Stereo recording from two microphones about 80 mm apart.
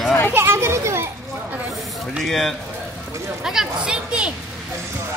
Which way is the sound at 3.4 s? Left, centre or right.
Centre.